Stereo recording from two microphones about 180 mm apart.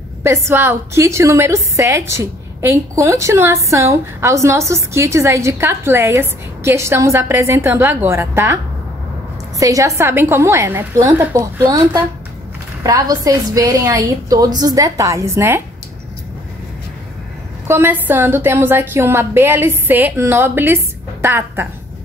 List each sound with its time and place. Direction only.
0.2 s a woman's voice: 15° right (ahead or behind)
9.6 s a woman's voice: 15° right (ahead or behind)
17.6 s a woman's voice: 10° right (ahead or behind)